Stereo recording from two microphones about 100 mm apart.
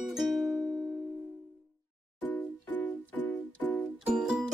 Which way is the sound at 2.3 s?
20° left (ahead or behind).